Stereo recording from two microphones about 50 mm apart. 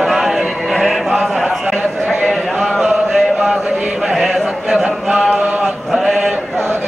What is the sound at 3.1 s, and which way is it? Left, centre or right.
Chant, centre.